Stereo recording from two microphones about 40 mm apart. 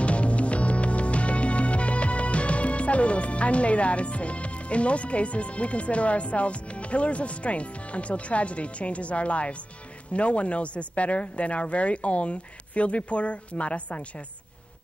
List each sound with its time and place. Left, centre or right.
0.0 s music: left
10.1 s speech: left